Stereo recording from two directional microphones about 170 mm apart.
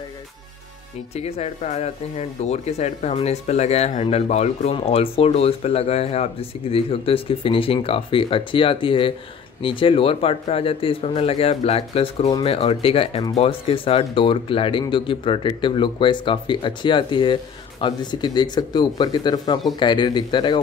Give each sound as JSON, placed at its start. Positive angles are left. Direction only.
{"t": 1.1, "sound": "speech", "side_deg": 40}